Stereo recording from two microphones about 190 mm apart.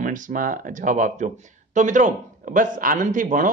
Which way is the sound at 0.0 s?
45° right (ahead or behind).